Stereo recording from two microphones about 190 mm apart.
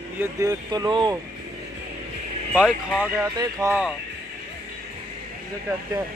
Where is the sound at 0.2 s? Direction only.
20° right (ahead or behind).